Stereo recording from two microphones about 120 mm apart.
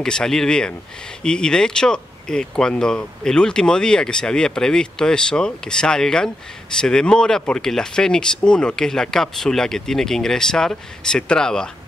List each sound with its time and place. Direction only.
0.0 s speech: 5° left (ahead or behind)